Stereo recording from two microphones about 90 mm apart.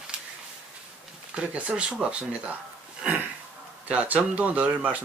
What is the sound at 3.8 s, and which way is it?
Speech, 15° right (ahead or behind).